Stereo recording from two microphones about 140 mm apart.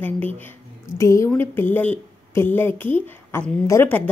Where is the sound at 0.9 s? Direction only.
20° left (ahead or behind).